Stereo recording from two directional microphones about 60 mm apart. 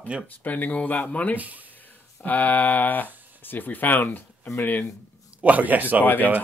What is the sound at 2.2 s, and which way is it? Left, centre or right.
Speech, left.